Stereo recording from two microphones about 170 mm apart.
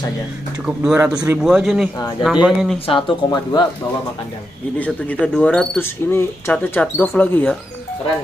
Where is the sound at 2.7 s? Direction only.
30° left (ahead or behind).